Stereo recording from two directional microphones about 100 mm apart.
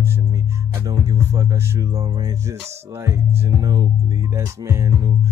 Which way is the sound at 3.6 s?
40° right (ahead or behind).